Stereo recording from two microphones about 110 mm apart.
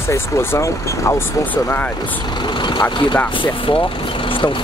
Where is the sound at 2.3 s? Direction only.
45° left (ahead or behind).